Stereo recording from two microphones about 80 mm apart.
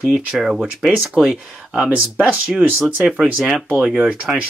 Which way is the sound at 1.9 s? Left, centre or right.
Centre.